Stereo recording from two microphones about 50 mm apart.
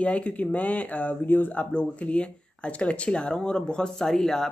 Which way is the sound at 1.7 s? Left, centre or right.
Left.